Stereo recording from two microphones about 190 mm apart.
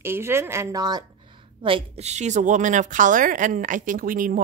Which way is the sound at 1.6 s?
30° right (ahead or behind).